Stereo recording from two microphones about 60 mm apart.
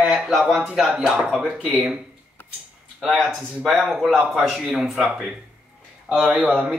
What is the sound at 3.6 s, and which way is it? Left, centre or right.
Speech, centre.